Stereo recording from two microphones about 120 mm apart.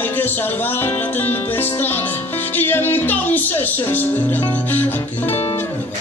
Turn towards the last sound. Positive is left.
turn(degrees=15)  # may be behind; listen again after turning